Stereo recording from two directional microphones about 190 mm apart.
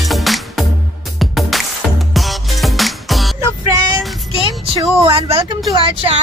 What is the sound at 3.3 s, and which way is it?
Music, 15° right (ahead or behind).